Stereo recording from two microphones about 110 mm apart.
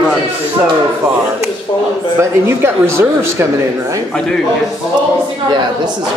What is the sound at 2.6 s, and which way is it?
Speech, 25° right (ahead or behind).